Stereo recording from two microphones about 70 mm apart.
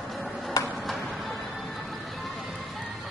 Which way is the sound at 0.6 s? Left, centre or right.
Left.